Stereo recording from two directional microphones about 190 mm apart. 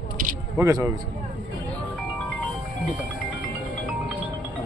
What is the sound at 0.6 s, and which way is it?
Speech, 15° right (ahead or behind).